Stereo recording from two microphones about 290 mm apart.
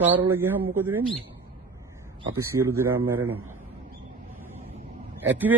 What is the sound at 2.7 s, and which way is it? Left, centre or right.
Speech, centre.